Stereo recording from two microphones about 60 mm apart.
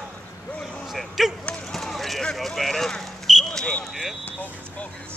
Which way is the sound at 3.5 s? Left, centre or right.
Centre.